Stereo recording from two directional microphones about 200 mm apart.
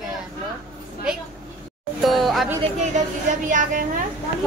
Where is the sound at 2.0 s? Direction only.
Centre (ahead or behind).